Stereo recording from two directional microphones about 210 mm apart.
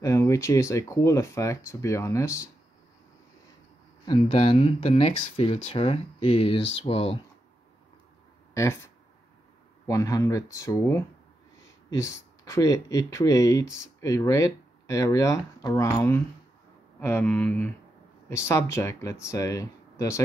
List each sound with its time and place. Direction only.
0.0 s speech: 15° left (ahead or behind)
4.0 s speech: 25° left (ahead or behind)
8.5 s speech: 15° left (ahead or behind)